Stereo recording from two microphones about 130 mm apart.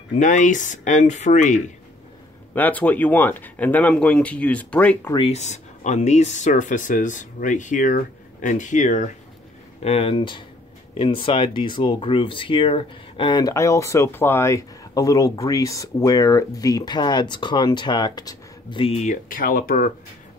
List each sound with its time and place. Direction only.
0.2 s speech: 75° left (ahead or behind)
2.5 s speech: 10° left (ahead or behind)
5.3 s speech: 65° left (ahead or behind)
9.8 s speech: 50° left (ahead or behind); by 18.8 s 30° left (ahead or behind)
18.8 s speech: 50° left (ahead or behind)
19.0 s speech: 90° left